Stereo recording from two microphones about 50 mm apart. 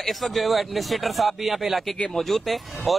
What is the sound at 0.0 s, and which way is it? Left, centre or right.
A man's voice, centre.